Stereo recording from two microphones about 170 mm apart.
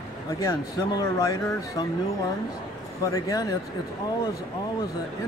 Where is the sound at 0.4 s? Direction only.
20° left (ahead or behind).